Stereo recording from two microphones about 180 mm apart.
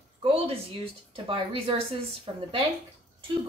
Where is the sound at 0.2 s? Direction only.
30° right (ahead or behind).